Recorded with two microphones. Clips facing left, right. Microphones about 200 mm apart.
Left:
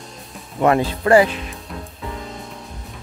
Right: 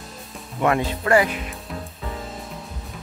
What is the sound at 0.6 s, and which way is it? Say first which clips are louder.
Speech: left 4 dB; 35° left (ahead or behind).